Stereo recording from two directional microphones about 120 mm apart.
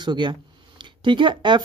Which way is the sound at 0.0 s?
40° right (ahead or behind).